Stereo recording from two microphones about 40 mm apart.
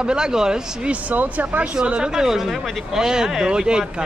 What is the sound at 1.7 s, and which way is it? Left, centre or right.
Speech, right.